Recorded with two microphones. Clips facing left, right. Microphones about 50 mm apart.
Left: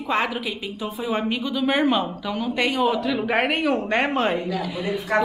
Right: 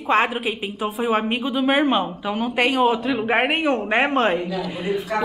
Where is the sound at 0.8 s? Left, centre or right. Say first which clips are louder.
Right 5 dB; right.